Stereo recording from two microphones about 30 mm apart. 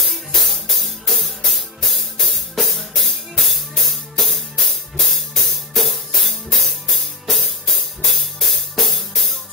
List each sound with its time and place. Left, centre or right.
0.0 s music: centre